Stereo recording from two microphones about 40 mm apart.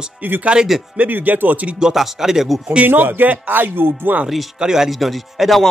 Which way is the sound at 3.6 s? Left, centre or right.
Right.